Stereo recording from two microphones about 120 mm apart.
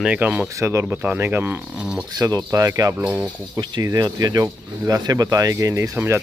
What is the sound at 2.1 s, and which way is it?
Speech, 30° right (ahead or behind).